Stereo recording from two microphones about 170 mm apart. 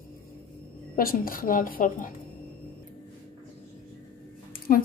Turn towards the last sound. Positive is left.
turn(degrees=55)  # may be behind; listen again after turning